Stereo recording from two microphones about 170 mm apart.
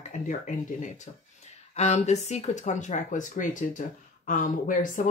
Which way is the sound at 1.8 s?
40° left (ahead or behind).